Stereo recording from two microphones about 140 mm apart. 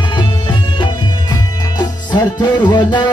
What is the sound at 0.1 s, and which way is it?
Music, 35° left (ahead or behind).